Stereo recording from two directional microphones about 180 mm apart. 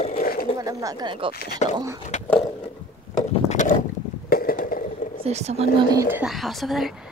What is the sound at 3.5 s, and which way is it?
Boat, 40° left (ahead or behind).